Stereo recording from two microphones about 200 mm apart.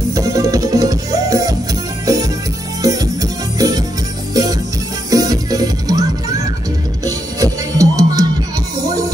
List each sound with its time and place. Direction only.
0.1 s music: 15° right (ahead or behind)
2.8 s music: 15° right (ahead or behind)